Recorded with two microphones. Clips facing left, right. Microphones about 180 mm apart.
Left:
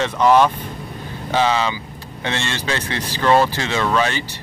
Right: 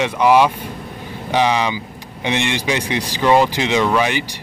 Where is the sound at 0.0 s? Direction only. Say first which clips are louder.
Right 1 dB; 10° right (ahead or behind).